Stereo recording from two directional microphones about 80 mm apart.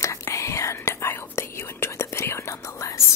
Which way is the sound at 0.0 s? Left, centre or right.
Left.